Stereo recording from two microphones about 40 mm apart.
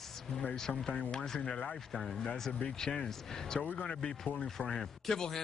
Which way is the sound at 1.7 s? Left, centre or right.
Centre.